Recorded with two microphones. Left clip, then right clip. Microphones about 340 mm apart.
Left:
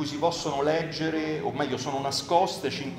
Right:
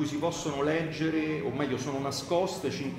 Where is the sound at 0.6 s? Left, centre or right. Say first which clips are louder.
Left 2 dB; centre.